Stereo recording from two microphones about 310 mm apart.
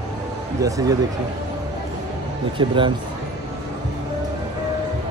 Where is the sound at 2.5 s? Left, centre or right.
Centre.